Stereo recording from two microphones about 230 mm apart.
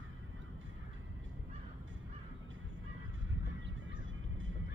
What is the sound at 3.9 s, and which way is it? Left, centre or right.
Honk, right.